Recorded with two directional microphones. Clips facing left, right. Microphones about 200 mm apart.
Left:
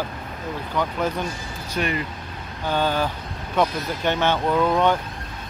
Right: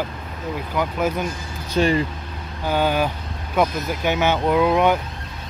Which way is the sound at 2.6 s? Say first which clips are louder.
Right 2 dB; 10° right (ahead or behind).